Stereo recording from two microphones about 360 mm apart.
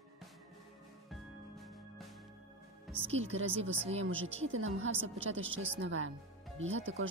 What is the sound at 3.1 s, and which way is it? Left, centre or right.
Speech, right.